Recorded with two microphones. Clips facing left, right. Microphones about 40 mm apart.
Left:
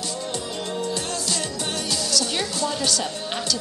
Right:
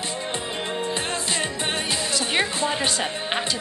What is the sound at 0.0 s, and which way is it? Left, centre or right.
Music, right.